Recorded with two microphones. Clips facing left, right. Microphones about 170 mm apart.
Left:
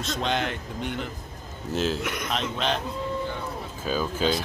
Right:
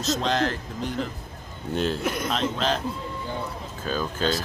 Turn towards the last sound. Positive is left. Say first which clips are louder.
# left 1 dB
turn(degrees=5)  # may be behind; listen again after turning